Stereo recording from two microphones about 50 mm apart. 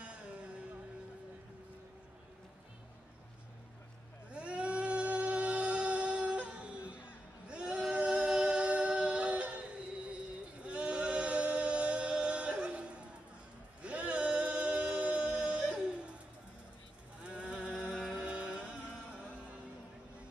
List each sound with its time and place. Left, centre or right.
0.0 s music: right
4.3 s singing: right
7.4 s a sound: right
7.9 s a capella: right
13.8 s singing: right
17.2 s a sound: right
17.6 s music: centre
17.8 s music: centre
18.1 s music: right